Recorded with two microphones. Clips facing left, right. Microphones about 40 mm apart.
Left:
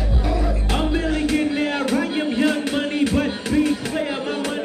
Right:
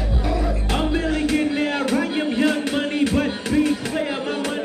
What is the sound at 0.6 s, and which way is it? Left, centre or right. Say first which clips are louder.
Music: even; centre.